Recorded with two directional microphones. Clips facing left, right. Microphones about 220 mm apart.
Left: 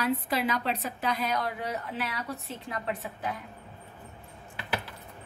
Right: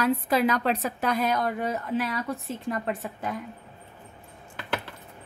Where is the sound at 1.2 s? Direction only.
50° right (ahead or behind).